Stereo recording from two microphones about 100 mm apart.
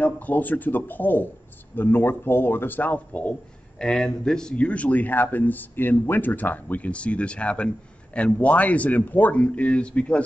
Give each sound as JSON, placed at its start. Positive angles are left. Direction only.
{"t": 0.0, "sound": "speech", "side_deg": 15}